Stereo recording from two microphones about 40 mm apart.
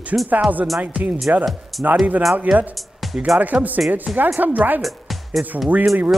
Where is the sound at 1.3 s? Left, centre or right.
Right.